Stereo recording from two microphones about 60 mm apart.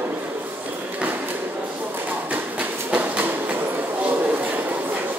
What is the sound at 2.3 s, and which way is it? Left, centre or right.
Train, right.